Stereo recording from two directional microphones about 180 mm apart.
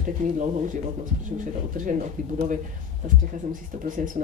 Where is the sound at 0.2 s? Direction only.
40° right (ahead or behind).